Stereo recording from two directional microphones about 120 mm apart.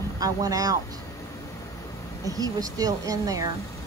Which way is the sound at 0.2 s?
30° right (ahead or behind).